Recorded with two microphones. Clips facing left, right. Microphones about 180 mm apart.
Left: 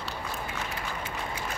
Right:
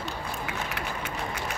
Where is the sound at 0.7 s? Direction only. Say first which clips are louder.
Right 2 dB; 75° right (ahead or behind).